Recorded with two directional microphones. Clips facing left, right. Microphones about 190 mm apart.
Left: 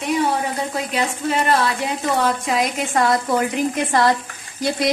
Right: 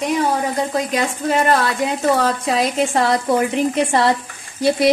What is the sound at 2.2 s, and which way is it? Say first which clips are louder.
A woman's voice: right 2 dB; 35° right (ahead or behind).